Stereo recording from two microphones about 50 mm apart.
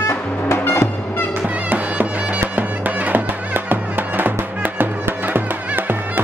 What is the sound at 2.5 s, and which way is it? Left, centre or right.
Music, right.